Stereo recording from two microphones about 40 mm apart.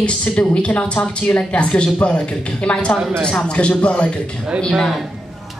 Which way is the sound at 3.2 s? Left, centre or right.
Left.